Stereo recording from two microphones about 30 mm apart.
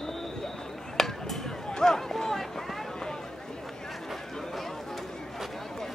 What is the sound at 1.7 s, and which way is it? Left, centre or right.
Speech, centre.